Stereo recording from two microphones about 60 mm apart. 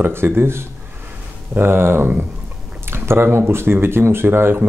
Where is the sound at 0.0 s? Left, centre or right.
Right.